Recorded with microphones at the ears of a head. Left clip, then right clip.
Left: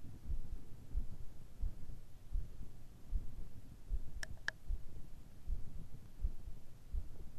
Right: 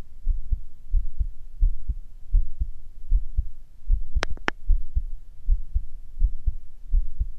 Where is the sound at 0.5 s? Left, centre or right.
Right.